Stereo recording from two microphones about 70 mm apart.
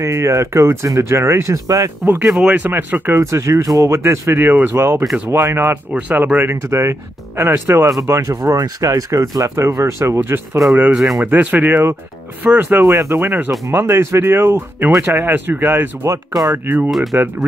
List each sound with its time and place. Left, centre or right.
0.0 s speech: right
1.5 s speech: right
2.2 s speech: centre
2.5 s speech: right
5.9 s speech: right
8.1 s speech: right
11.0 s speech: centre
11.2 s speech: right
12.9 s speech: right